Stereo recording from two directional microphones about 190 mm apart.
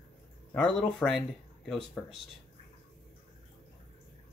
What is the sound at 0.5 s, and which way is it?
Speech, 5° left (ahead or behind).